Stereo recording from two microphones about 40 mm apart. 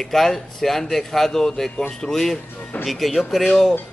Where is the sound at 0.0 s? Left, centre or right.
Centre.